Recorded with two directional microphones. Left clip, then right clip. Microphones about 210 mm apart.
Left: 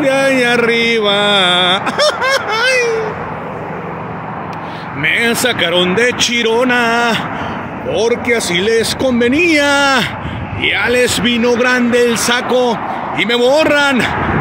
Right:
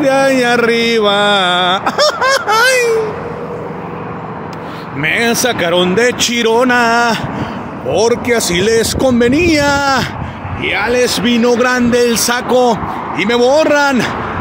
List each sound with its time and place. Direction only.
0.0 s mantra: 15° right (ahead or behind)
5.0 s mantra: 10° right (ahead or behind)